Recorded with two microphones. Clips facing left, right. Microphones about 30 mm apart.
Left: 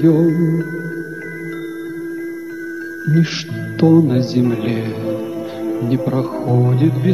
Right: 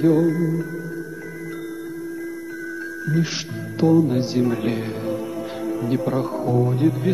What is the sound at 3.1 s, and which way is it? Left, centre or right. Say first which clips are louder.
A man's voice: left 6 dB; left.